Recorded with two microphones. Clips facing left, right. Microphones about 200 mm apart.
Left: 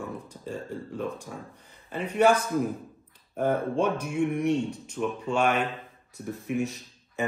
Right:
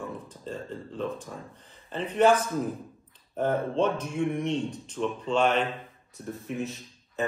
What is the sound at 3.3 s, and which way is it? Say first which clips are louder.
Speech: even; 10° left (ahead or behind).